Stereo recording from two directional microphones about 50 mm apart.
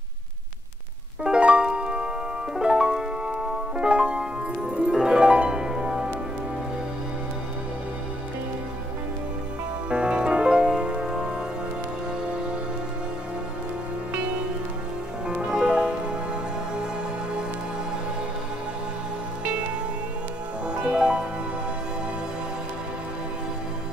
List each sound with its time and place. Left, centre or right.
1.2 s music: centre
9.8 s music: centre
15.2 s music: centre
20.6 s music: centre